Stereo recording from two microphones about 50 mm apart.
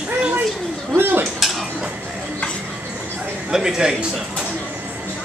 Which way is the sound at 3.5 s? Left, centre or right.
Centre.